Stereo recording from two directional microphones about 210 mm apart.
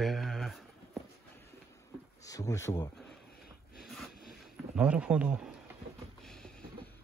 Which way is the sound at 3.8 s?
Centre (ahead or behind).